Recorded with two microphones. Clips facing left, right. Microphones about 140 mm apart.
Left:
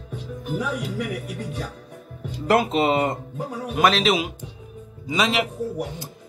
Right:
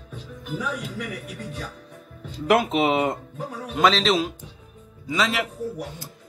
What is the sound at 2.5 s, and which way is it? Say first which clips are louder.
A man's voice: left 1 dB; centre (ahead or behind).